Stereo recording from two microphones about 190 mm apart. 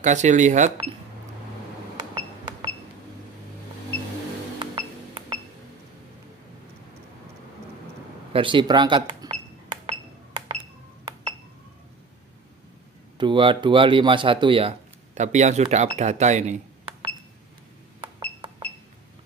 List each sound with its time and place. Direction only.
0.0 s speech: 40° right (ahead or behind)
2.0 s a sound: 20° right (ahead or behind)
4.6 s cash register: 20° right (ahead or behind)
8.3 s cash register: 25° right (ahead or behind)
13.2 s speech: 25° right (ahead or behind)
18.0 s cash register: 20° right (ahead or behind)